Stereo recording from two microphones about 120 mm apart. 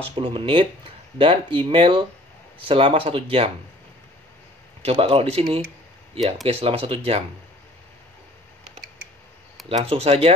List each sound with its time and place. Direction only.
0.1 s speech: 45° right (ahead or behind)
4.8 s speech: 55° right (ahead or behind)
9.7 s speech: 55° right (ahead or behind)